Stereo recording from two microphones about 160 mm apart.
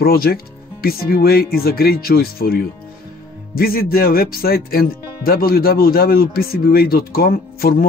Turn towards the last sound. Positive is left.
turn(degrees=65)  # may be behind; listen again after turning